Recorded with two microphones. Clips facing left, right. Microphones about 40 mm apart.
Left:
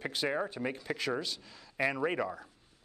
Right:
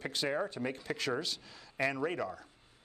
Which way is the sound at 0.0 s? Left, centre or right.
Centre.